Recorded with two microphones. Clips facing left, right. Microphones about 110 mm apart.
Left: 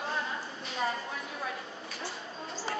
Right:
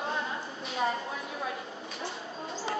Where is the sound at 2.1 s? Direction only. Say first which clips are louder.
Right 3 dB; centre (ahead or behind).